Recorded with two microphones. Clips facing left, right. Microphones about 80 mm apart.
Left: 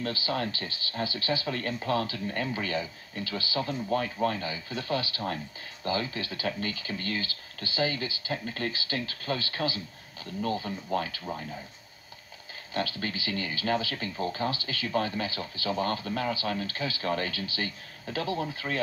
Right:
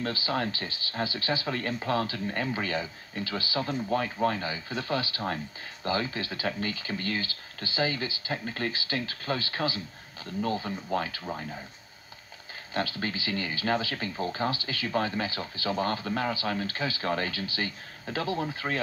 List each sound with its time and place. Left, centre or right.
0.0 s speech: right
12.7 s speech: right